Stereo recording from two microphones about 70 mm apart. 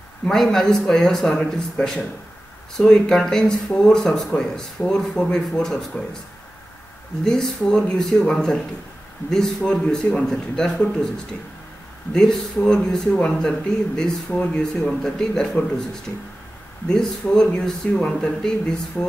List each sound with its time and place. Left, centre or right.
0.3 s speech: centre
7.2 s speech: centre
12.1 s speech: centre